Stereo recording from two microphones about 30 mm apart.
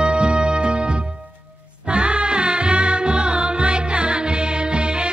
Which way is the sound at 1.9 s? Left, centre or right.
Right.